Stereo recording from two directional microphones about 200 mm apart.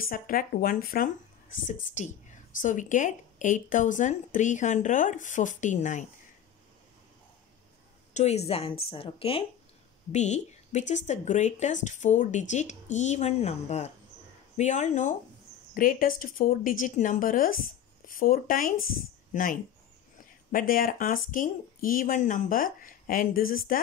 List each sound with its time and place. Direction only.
0.0 s speech: 45° left (ahead or behind)
8.1 s a woman's voice: 35° left (ahead or behind)